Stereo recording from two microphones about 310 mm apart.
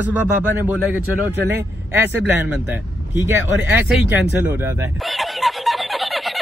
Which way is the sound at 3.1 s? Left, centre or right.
Centre.